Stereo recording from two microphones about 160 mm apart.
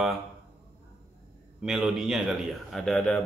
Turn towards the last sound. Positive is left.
turn(degrees=5)  # may be behind; listen again after turning